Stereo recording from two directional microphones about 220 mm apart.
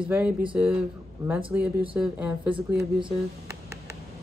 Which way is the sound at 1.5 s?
10° right (ahead or behind).